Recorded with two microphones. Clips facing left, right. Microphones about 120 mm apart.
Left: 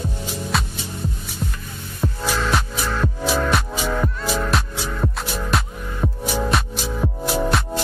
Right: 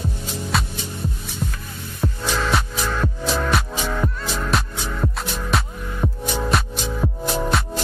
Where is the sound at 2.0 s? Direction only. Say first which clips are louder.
Even; centre (ahead or behind).